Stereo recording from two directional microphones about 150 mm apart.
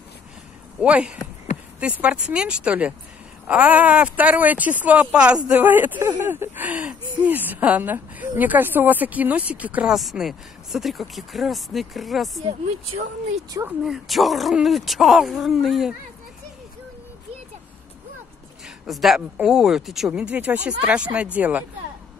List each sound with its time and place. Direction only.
0.7 s speech: 5° right (ahead or behind)
13.7 s speech: 5° right (ahead or behind)
18.9 s speech: centre (ahead or behind)